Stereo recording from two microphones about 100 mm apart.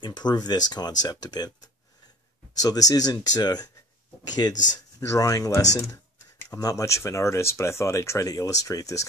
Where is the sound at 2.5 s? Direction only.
40° left (ahead or behind).